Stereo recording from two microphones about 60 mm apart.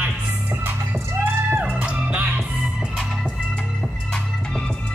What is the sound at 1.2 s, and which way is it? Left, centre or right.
Music, right.